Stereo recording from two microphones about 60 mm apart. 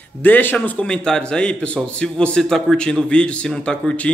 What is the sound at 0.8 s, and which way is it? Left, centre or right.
A man's voice, centre.